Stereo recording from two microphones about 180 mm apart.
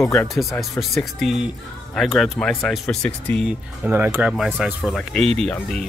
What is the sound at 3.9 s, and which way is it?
Speech, 10° right (ahead or behind).